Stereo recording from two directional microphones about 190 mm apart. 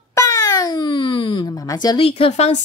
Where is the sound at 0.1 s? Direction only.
20° left (ahead or behind).